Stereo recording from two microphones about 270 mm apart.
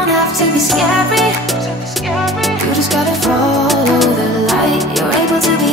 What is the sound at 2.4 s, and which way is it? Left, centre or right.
Music, centre.